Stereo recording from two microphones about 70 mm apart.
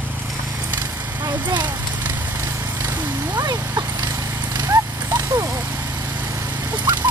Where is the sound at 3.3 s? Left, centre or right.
Right.